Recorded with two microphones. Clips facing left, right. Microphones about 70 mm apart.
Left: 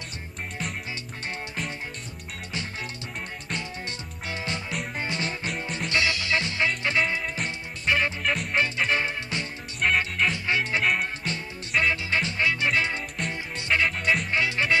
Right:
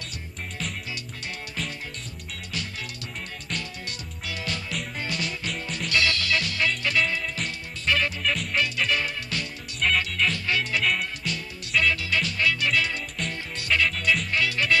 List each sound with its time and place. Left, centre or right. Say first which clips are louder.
4.3 s music: left 1 dB; left
8.2 s music: left 1 dB; centre
8.5 s music: left 2 dB; left